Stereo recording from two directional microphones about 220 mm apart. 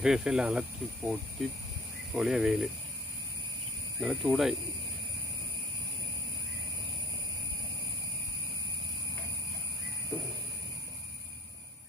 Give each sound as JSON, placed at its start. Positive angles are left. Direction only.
{"t": 0.0, "sound": "speech", "side_deg": -5}
{"t": 2.1, "sound": "speech", "side_deg": 0}
{"t": 4.0, "sound": "speech", "side_deg": 0}